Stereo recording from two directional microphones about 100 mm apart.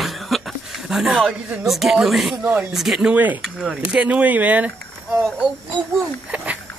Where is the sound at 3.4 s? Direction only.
5° right (ahead or behind).